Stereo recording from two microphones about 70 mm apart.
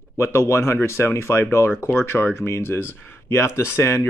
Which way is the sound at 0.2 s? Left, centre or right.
Left.